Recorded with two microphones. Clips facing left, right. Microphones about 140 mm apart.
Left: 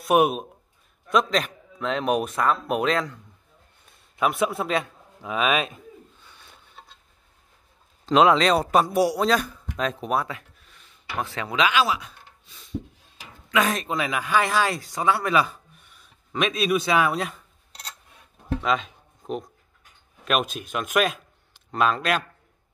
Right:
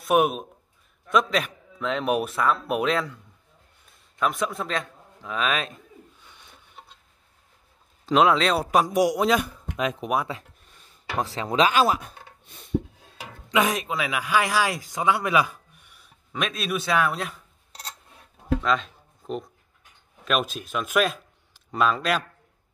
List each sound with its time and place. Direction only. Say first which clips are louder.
0.0 s a man's voice: left 1 dB; centre (ahead or behind)
4.2 s a man's voice: left 3 dB; 5° left (ahead or behind)
6.2 s a sound: even; 15° right (ahead or behind)
8.0 s speech: left 2 dB; centre (ahead or behind)
11.2 s speech: right 2 dB; 35° right (ahead or behind); by 12.8 s 55° right (ahead or behind)
13.7 s speech: left 1 dB; 5° right (ahead or behind)
16.3 s a man's voice: left 5 dB; centre (ahead or behind)
18.6 s music: even; 5° left (ahead or behind)
20.2 s a man's voice: left 1 dB; centre (ahead or behind)